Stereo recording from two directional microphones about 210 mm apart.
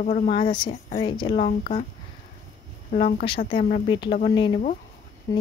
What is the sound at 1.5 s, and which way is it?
Speech, 40° left (ahead or behind).